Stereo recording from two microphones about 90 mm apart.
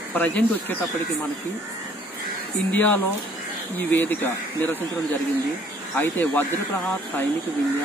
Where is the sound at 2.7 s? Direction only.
20° left (ahead or behind).